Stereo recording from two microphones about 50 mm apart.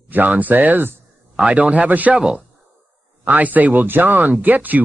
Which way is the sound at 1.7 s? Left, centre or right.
Right.